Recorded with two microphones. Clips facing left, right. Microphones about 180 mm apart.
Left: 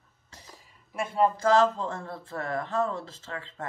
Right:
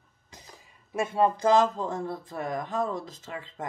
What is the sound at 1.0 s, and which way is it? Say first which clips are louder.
Speech: right 1 dB; 20° right (ahead or behind).